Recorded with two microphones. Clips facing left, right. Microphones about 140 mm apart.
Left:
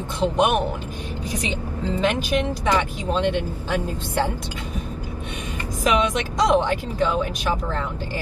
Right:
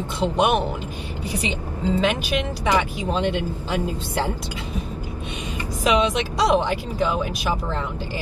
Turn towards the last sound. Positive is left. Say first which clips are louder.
# even
turn(degrees=-10)  # may be behind; listen again after turning